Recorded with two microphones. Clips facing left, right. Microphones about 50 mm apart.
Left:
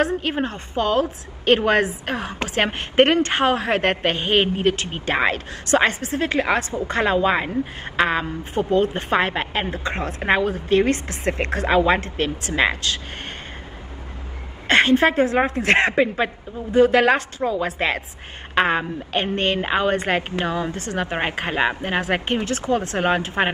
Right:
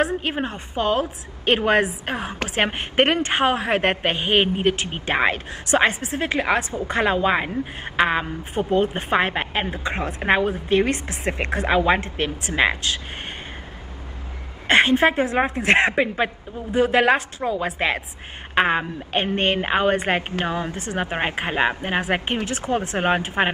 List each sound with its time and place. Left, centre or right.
0.3 s a woman's voice: centre
12.0 s speech: right
14.7 s a woman's voice: centre
19.3 s speech: right
21.1 s a woman's voice: centre